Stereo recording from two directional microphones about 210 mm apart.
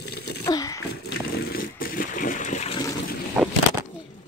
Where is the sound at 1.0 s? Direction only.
50° left (ahead or behind); by 2.8 s 35° left (ahead or behind).